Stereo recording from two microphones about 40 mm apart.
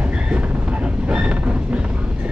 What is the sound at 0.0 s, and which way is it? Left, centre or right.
Train, right.